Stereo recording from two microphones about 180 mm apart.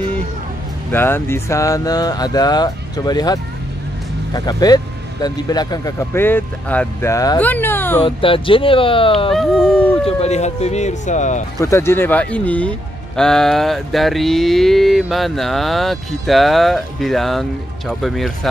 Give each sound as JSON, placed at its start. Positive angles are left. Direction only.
{"t": 0.9, "sound": "speech", "side_deg": 15}
{"t": 8.0, "sound": "speech", "side_deg": 30}
{"t": 9.3, "sound": "speech", "side_deg": 0}
{"t": 10.0, "sound": "speech", "side_deg": 35}
{"t": 11.6, "sound": "speech", "side_deg": 15}